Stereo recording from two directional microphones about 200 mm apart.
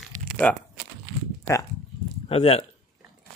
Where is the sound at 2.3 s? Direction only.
30° left (ahead or behind).